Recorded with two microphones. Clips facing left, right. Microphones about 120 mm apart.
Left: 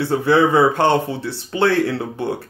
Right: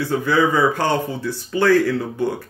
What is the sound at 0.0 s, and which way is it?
Speech, 25° left (ahead or behind).